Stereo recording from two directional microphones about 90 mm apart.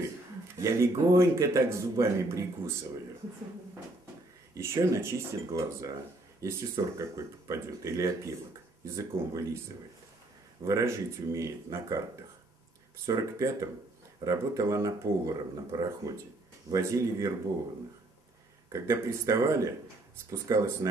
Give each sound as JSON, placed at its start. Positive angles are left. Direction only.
{"t": 0.6, "sound": "speech", "side_deg": -35}
{"t": 4.6, "sound": "speech", "side_deg": -35}
{"t": 10.6, "sound": "speech", "side_deg": -35}
{"t": 13.0, "sound": "speech", "side_deg": -35}
{"t": 18.7, "sound": "speech", "side_deg": -35}